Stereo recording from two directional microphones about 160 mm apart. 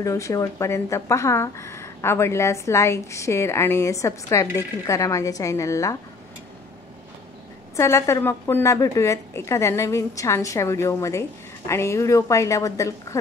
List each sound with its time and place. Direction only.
0.0 s a woman's voice: 20° left (ahead or behind)
7.7 s a woman's voice: 20° left (ahead or behind)